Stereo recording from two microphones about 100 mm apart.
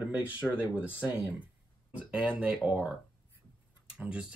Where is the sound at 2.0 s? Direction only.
10° right (ahead or behind).